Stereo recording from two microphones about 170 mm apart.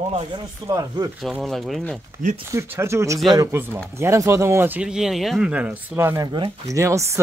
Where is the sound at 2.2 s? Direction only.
50° right (ahead or behind).